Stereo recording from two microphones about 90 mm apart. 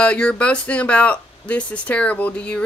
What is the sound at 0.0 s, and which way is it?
Speech, 10° left (ahead or behind).